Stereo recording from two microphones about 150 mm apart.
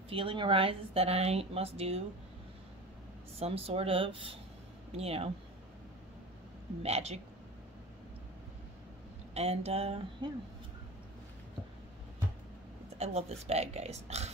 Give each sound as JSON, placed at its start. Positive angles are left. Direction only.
{"t": 0.1, "sound": "a woman's voice", "side_deg": -35}
{"t": 3.3, "sound": "a woman's voice", "side_deg": -40}
{"t": 6.8, "sound": "speech", "side_deg": -45}
{"t": 9.3, "sound": "speech", "side_deg": -45}
{"t": 12.9, "sound": "speech", "side_deg": -45}